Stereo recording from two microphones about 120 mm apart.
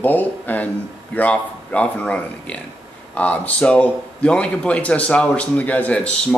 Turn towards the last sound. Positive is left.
turn(degrees=10)  # may be behind; listen again after turning